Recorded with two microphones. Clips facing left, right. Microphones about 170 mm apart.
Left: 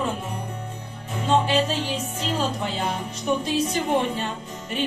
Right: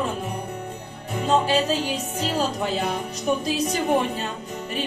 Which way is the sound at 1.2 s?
35° right (ahead or behind).